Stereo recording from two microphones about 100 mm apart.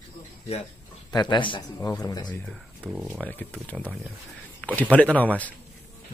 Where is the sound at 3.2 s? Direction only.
15° left (ahead or behind).